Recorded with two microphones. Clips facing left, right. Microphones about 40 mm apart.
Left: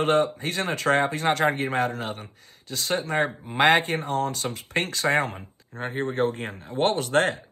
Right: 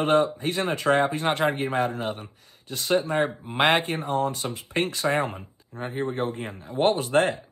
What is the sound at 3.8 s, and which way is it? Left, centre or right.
Speech, left.